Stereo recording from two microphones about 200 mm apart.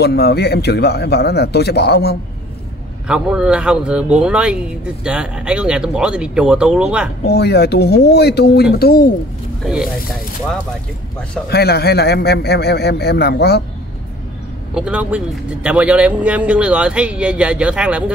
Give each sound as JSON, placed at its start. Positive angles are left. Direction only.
{"t": 0.0, "sound": "a man's voice", "side_deg": 55}
{"t": 3.1, "sound": "speech", "side_deg": -5}
{"t": 7.2, "sound": "a man's voice", "side_deg": 55}
{"t": 11.4, "sound": "a man's voice", "side_deg": 55}
{"t": 14.7, "sound": "speech", "side_deg": -5}